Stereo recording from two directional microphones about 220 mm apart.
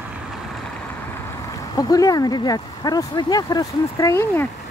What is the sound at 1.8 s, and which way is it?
Speech, 15° left (ahead or behind).